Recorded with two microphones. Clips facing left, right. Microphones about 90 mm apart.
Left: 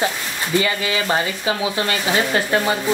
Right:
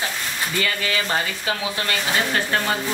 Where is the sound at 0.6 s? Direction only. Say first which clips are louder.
Left 5 dB; 20° left (ahead or behind).